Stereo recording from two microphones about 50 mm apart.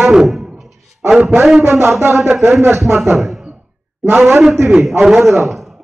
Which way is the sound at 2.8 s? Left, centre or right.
Centre.